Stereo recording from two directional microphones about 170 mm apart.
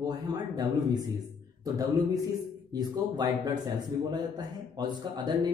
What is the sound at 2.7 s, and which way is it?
Speech, 20° right (ahead or behind).